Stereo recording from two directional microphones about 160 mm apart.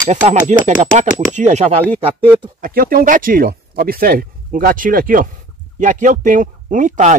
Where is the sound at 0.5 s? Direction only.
50° right (ahead or behind).